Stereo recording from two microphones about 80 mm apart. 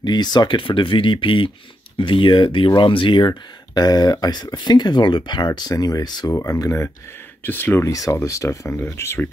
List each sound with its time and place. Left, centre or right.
0.0 s speech: left
6.3 s speech: left
7.4 s speech: left
8.1 s speech: left